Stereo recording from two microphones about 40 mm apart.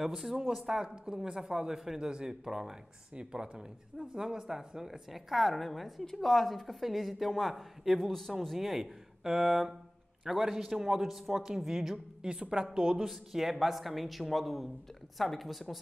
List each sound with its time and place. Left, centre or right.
0.0 s a woman's voice: centre
12.2 s a woman's voice: right
13.0 s a woman's voice: centre